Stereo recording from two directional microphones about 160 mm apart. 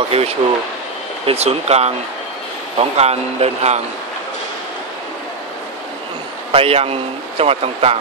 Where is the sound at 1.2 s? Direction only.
40° right (ahead or behind).